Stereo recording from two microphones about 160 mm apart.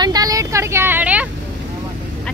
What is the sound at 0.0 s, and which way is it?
Vehicle, 25° right (ahead or behind).